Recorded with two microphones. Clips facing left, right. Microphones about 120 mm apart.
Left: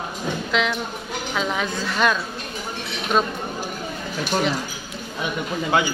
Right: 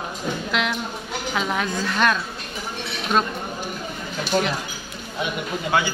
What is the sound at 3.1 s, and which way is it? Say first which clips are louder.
Chink: left 1 dB; centre (ahead or behind).